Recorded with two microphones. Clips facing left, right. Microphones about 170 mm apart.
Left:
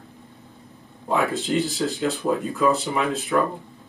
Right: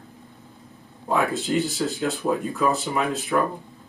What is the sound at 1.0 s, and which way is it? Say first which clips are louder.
Speech: even; centre (ahead or behind).